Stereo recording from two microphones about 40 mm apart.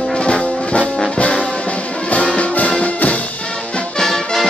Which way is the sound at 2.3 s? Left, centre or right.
Left.